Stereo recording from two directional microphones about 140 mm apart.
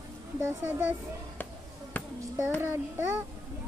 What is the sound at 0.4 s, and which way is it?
Child singing, 15° right (ahead or behind).